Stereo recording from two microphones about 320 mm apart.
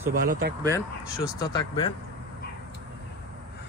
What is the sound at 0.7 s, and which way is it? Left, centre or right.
Speech, centre.